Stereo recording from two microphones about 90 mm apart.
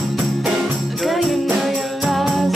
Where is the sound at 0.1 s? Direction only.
Centre (ahead or behind).